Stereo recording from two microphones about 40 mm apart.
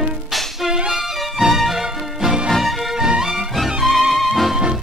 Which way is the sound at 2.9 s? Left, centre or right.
Centre.